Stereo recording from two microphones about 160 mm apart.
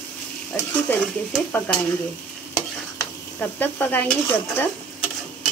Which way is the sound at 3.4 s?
10° left (ahead or behind).